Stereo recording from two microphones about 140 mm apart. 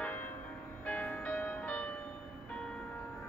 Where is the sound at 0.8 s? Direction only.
10° left (ahead or behind).